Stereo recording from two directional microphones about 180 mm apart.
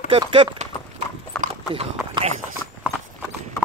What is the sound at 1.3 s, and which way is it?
Clip-clop, 5° left (ahead or behind).